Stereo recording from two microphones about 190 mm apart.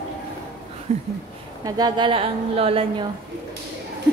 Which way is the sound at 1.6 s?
20° right (ahead or behind).